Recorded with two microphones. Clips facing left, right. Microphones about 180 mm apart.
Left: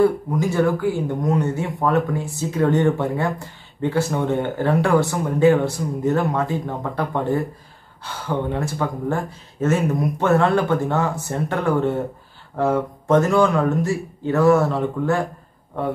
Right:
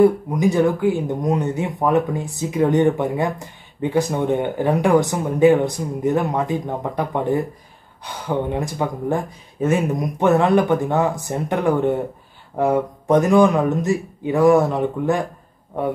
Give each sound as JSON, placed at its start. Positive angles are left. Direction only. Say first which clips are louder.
{"t": 0.0, "sound": "speech", "louder": "right 3 dB", "side_deg": -15}